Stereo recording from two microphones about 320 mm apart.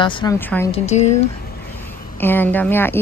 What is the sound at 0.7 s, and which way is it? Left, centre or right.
Speech, left.